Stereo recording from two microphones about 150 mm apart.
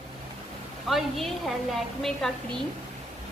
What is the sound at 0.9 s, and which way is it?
Speech, centre (ahead or behind).